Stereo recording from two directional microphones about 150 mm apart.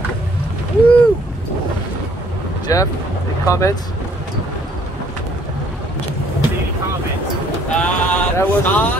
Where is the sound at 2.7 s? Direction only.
25° left (ahead or behind).